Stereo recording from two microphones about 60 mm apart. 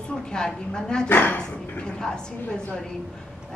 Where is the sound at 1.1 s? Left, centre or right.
Left.